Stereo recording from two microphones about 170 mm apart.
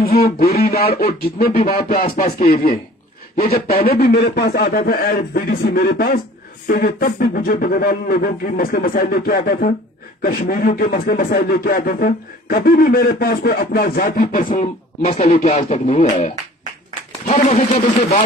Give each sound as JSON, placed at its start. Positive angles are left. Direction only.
{"t": 0.2, "sound": "speech", "side_deg": 65}
{"t": 2.1, "sound": "speech", "side_deg": 45}
{"t": 3.8, "sound": "speech", "side_deg": 65}
{"t": 15.0, "sound": "speech", "side_deg": 40}
{"t": 17.3, "sound": "speech", "side_deg": 40}